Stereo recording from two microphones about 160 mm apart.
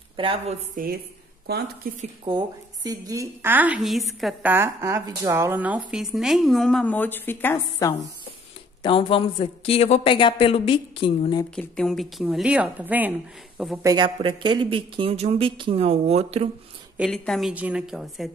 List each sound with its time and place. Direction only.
0.1 s a woman's voice: 35° right (ahead or behind)
1.5 s a woman's voice: 90° right
2.2 s a woman's voice: 25° right (ahead or behind); by 4.4 s centre (ahead or behind)
4.4 s speech: 10° right (ahead or behind); by 8.1 s 15° left (ahead or behind)
8.8 s a woman's voice: 35° left (ahead or behind)
11.5 s speech: 5° left (ahead or behind)
13.8 s a woman's voice: 30° right (ahead or behind)
16.9 s speech: centre (ahead or behind)